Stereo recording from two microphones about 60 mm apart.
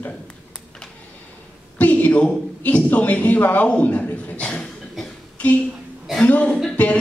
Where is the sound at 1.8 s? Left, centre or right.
Left.